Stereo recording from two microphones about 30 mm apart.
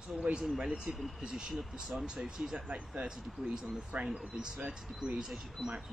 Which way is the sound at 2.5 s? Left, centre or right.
Right.